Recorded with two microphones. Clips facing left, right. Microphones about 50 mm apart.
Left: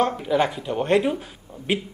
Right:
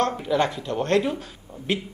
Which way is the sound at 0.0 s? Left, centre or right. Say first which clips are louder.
Left 1 dB; centre.